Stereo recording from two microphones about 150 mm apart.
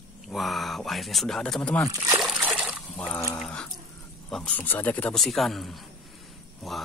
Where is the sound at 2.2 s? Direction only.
5° right (ahead or behind).